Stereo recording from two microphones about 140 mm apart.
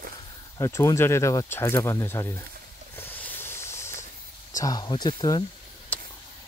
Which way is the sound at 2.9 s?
15° left (ahead or behind).